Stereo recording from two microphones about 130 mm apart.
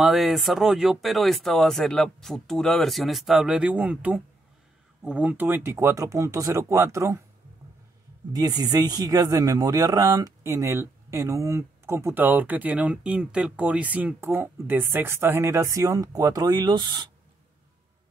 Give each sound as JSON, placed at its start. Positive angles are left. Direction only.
{"t": 0.0, "sound": "a man's voice", "side_deg": 0}
{"t": 8.3, "sound": "a man's voice", "side_deg": -30}